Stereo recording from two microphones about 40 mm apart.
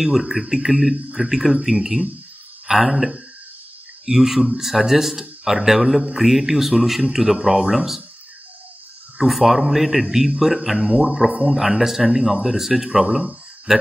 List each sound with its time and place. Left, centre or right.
0.0 s a man's voice: centre
9.2 s a man's voice: centre
10.9 s speech: right
11.1 s speech: centre
13.0 s speech: centre